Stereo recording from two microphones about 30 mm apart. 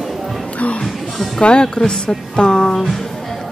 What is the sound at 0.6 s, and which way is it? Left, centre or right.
Music, left.